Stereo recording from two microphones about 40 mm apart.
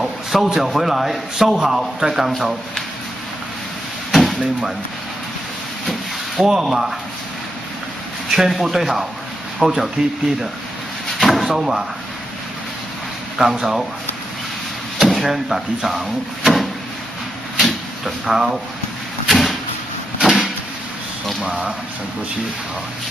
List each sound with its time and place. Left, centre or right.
0.0 s a man's voice: centre
4.1 s a sound: centre
6.6 s speech: centre
8.3 s a man's voice: centre
11.1 s drawer open or close: centre
11.5 s speech: centre
15.0 s speech: centre
17.6 s drawer open or close: centre
19.2 s a sound: centre
20.2 s vehicle: centre
21.4 s speech: centre